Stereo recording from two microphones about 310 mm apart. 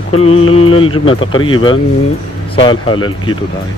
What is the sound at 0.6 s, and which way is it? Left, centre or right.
Speech, left.